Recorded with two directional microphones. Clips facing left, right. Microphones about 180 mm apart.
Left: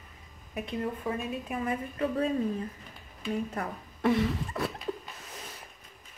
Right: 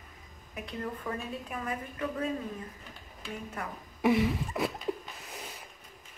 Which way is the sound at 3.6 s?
35° left (ahead or behind).